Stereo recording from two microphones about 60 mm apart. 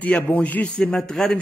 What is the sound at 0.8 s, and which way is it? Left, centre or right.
Speech, centre.